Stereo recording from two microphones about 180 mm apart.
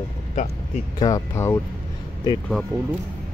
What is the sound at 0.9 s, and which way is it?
Speech, 20° left (ahead or behind).